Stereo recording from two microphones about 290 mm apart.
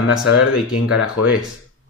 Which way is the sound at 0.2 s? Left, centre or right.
Left.